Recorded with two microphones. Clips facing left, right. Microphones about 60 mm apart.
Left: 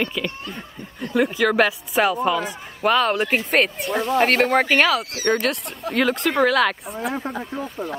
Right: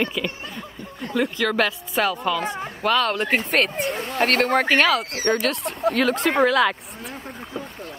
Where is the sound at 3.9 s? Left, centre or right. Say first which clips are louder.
Left 8 dB; left.